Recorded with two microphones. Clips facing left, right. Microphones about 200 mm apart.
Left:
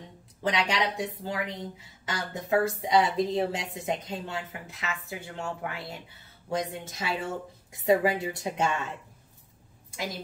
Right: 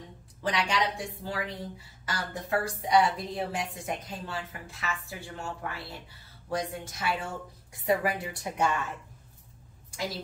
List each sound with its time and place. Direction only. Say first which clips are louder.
0.4 s a woman's voice: left 1 dB; 20° left (ahead or behind)